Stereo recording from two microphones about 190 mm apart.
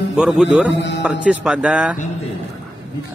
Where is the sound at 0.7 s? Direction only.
65° left (ahead or behind).